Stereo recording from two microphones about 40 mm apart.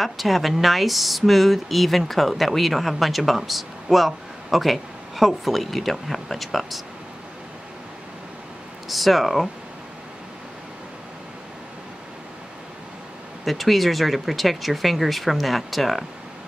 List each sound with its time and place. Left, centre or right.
0.0 s speech: centre
8.8 s speech: centre
13.5 s speech: centre